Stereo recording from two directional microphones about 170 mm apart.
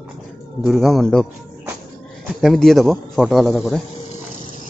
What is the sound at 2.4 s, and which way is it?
A man's voice, centre (ahead or behind).